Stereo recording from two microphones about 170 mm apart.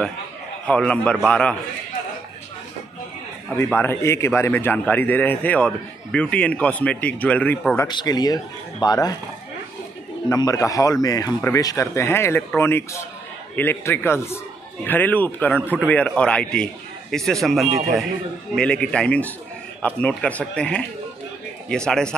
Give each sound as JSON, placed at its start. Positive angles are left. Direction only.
{"t": 0.7, "sound": "a man's voice", "side_deg": 5}
{"t": 3.5, "sound": "a man's voice", "side_deg": 15}
{"t": 10.3, "sound": "a man's voice", "side_deg": 20}